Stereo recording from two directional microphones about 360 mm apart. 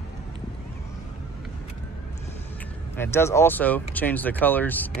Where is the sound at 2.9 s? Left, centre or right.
Centre.